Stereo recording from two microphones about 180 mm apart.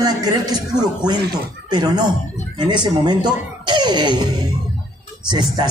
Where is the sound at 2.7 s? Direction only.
25° right (ahead or behind).